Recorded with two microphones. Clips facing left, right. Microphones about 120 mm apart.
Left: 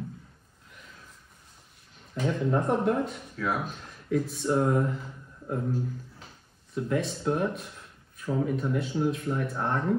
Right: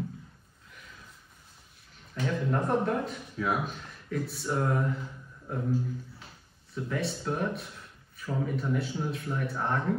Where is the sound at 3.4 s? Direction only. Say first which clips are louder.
Even; 20° right (ahead or behind).